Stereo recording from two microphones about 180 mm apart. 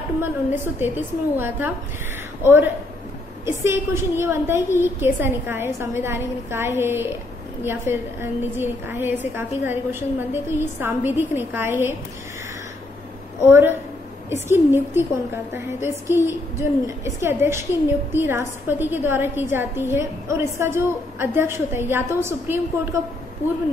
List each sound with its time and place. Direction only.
0.2 s a woman's voice: 10° right (ahead or behind)
13.5 s a woman's voice: 10° right (ahead or behind)